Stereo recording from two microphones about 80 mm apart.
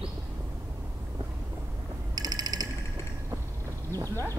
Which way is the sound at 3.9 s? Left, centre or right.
Left.